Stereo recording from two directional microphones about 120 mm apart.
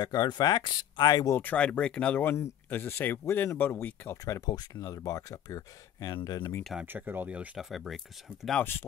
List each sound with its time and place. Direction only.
0.0 s speech: 35° left (ahead or behind)
1.3 s speech: 15° left (ahead or behind)
4.2 s speech: 30° left (ahead or behind)
6.6 s speech: centre (ahead or behind)
6.9 s speech: 15° right (ahead or behind)
7.7 s speech: centre (ahead or behind)